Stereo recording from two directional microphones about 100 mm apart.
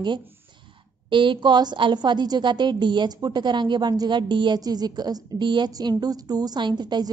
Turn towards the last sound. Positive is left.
turn(degrees=-45)  # may be behind; listen again after turning